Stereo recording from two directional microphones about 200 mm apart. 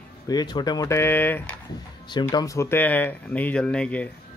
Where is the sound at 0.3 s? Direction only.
20° left (ahead or behind).